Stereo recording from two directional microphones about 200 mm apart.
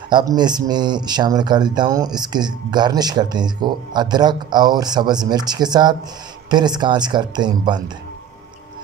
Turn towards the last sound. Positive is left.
turn(degrees=-20)  # may be behind; listen again after turning